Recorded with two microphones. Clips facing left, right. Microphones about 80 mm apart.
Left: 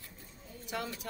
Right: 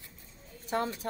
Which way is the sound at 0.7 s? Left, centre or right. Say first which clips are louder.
Right 7 dB; right.